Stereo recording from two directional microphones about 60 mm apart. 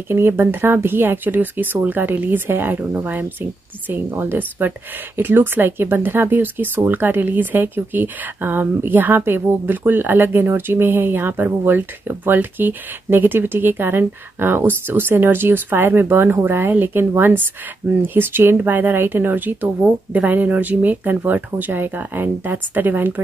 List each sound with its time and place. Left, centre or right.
0.1 s speech: right
18.0 s speech: right